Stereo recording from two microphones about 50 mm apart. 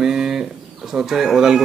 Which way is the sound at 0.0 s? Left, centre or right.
Centre.